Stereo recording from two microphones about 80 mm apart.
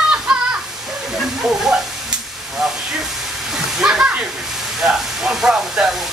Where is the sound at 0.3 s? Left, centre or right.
Centre.